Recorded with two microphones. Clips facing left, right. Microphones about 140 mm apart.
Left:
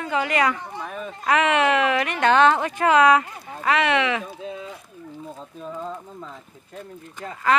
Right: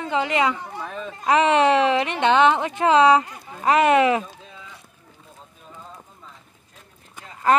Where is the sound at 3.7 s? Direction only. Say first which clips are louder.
Right 5 dB; 45° right (ahead or behind).